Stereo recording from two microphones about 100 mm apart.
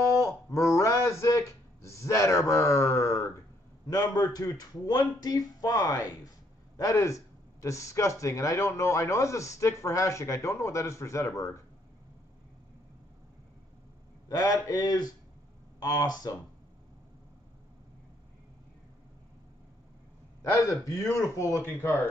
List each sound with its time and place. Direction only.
0.1 s a sound: 30° left (ahead or behind)
3.9 s speech: 40° left (ahead or behind)
14.3 s speech: 40° left (ahead or behind)
20.8 s speech: 35° left (ahead or behind)